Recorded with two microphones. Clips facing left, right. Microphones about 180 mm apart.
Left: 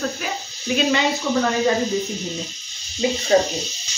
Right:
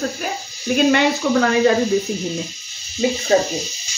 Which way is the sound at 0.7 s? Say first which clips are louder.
Right 4 dB; 65° right (ahead or behind).